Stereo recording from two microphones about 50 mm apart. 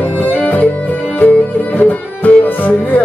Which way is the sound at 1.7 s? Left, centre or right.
Left.